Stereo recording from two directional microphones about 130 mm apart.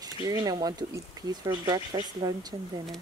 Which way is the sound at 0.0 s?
30° right (ahead or behind).